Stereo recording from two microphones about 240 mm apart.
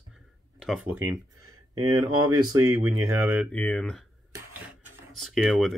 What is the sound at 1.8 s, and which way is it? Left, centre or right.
Speech, centre.